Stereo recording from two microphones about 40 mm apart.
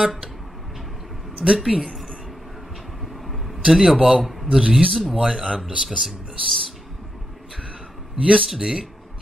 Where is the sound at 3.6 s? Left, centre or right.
Centre.